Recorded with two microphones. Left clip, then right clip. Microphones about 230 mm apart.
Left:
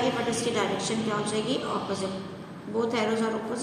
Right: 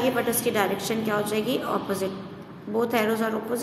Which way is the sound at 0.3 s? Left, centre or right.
Right.